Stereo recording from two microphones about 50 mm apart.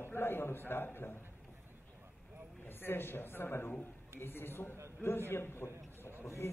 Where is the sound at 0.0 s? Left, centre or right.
Left.